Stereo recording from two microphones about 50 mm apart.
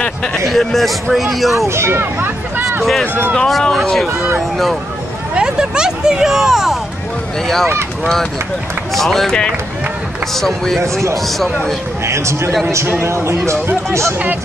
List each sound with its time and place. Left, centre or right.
0.5 s speech: centre
1.7 s speech: right
3.3 s speech: centre
5.3 s speech: centre
8.9 s speech: centre
10.3 s speech: centre
10.8 s speech: right
11.2 s speech: centre
12.1 s speech: right